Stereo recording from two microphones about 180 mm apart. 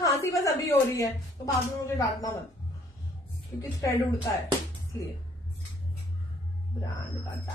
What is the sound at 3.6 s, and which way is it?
Speech, 20° left (ahead or behind).